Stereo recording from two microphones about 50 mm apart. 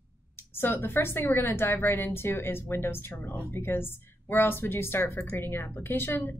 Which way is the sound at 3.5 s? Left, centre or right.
Left.